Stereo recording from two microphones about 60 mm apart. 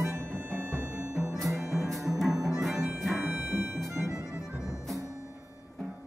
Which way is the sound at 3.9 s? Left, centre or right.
Right.